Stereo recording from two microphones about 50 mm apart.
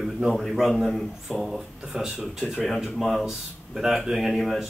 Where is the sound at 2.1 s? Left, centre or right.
Centre.